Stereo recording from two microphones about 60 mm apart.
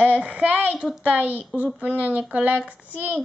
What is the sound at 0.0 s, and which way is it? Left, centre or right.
A woman's voice, centre.